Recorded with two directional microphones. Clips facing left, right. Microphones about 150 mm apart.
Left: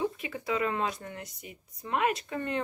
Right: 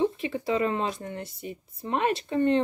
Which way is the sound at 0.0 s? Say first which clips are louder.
Right 6 dB; 25° right (ahead or behind).